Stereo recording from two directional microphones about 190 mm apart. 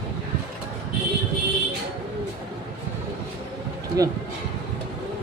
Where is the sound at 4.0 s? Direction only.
20° right (ahead or behind).